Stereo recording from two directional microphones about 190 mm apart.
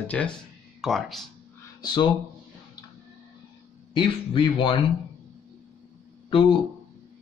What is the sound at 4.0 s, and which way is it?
Speech, 25° left (ahead or behind).